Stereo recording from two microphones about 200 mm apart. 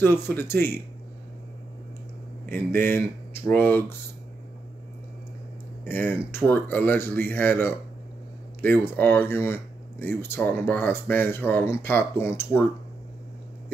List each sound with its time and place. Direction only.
0.0 s speech: 10° left (ahead or behind)
2.8 s speech: 10° left (ahead or behind)
5.9 s speech: 10° left (ahead or behind)